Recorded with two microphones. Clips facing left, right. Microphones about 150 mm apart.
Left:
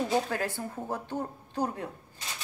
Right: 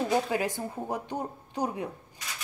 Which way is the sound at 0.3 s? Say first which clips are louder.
Right 3 dB; 15° right (ahead or behind).